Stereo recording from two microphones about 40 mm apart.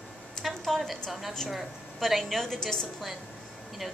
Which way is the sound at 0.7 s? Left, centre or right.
Centre.